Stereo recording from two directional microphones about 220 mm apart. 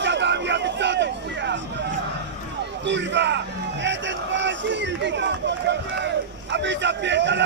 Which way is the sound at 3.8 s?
55° right (ahead or behind).